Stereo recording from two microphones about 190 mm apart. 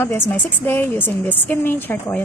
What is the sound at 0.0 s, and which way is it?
A woman's voice, 10° left (ahead or behind).